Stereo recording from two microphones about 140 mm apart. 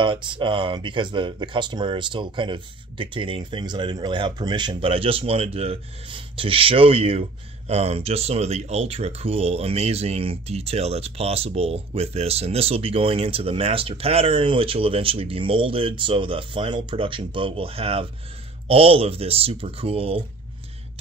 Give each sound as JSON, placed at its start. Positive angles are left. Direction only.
{"t": 0.0, "sound": "speech", "side_deg": -35}